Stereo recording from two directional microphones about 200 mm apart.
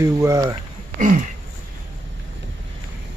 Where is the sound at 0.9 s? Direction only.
40° right (ahead or behind).